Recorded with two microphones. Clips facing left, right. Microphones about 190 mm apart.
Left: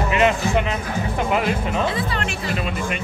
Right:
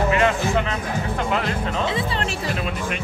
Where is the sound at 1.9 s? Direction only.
25° right (ahead or behind).